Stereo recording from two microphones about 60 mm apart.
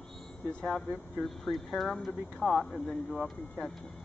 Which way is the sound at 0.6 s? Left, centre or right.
Centre.